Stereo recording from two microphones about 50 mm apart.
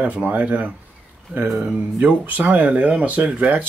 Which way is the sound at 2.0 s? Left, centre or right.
Right.